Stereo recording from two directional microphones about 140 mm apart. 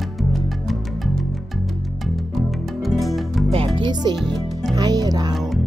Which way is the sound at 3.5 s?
35° right (ahead or behind).